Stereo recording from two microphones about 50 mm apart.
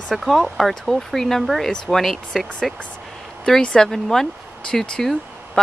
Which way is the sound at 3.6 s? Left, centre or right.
Centre.